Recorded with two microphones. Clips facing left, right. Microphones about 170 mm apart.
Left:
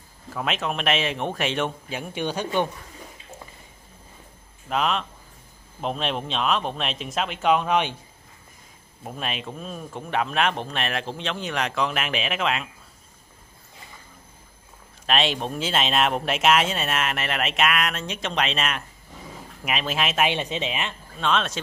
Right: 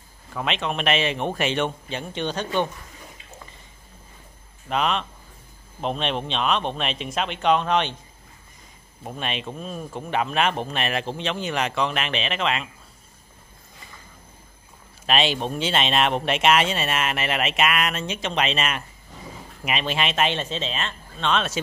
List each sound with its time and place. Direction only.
0.3 s speech: centre (ahead or behind)
4.6 s speech: centre (ahead or behind)
9.0 s speech: centre (ahead or behind)
15.0 s speech: centre (ahead or behind); by 20.9 s 15° left (ahead or behind)
21.2 s speech: centre (ahead or behind)